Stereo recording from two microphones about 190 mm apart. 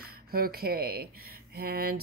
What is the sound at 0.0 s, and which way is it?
Speech, 50° right (ahead or behind).